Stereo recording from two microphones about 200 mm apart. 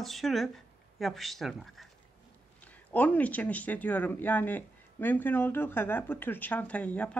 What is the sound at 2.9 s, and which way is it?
Speech, 10° left (ahead or behind).